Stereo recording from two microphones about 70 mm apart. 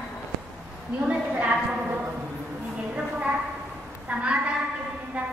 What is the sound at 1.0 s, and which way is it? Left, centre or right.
Speech, centre.